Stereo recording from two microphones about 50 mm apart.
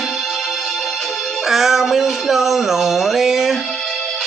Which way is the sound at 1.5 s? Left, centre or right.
Centre.